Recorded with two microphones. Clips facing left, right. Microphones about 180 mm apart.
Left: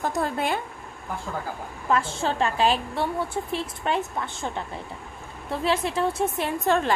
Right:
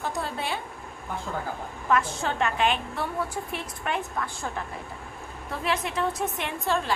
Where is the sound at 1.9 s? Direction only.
30° left (ahead or behind).